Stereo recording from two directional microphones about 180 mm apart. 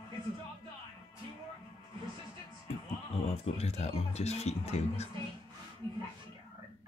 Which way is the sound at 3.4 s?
35° left (ahead or behind).